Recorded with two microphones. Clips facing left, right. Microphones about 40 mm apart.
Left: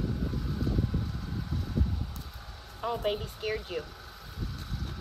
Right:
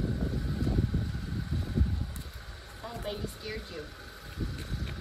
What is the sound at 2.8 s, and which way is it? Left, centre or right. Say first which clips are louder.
Speech: left 7 dB; left.